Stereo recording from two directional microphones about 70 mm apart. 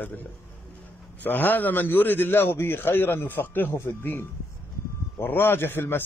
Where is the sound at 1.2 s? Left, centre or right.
Left.